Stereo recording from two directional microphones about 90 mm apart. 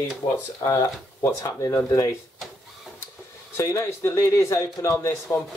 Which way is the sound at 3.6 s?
30° left (ahead or behind).